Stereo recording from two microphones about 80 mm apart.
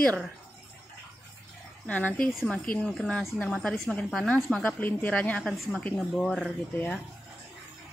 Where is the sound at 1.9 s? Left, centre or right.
Centre.